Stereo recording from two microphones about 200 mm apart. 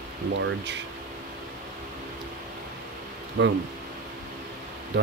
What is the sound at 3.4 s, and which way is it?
Speech, 50° right (ahead or behind).